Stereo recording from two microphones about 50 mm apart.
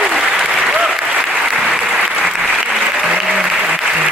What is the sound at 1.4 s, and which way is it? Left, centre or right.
Applause, centre.